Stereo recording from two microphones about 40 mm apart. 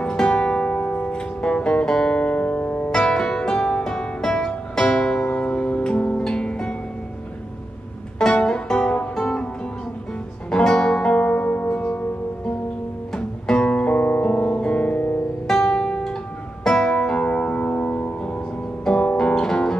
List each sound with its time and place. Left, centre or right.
0.0 s music: left
2.1 s music: left
5.2 s music: left
8.2 s music: centre
10.5 s music: centre
13.1 s music: centre
13.7 s music: left
14.2 s music: left
15.4 s music: centre
16.9 s music: left
18.9 s music: left